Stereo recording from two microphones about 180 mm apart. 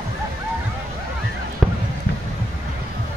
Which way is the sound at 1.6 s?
Centre (ahead or behind).